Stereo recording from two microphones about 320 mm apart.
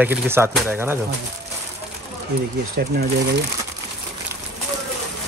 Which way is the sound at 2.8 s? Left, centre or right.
Right.